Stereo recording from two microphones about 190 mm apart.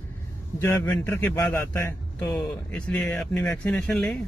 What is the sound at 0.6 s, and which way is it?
A man's voice, 15° left (ahead or behind).